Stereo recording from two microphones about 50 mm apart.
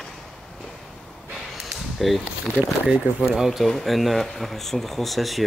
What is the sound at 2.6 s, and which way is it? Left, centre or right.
Speech, right.